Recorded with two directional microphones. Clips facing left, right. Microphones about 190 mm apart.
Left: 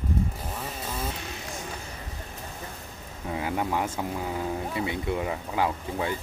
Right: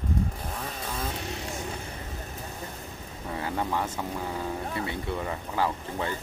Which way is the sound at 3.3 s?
10° left (ahead or behind).